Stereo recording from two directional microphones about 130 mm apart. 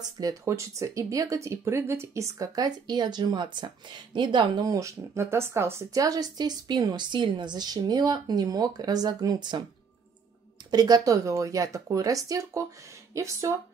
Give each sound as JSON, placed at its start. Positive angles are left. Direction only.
{"t": 0.2, "sound": "speech", "side_deg": -25}
{"t": 10.7, "sound": "speech", "side_deg": -30}